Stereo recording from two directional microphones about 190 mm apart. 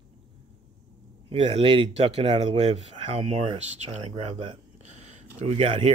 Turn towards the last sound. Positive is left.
turn(degrees=-30)  # may be behind; listen again after turning